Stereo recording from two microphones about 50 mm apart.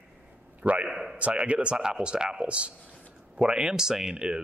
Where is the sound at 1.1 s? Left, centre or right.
Right.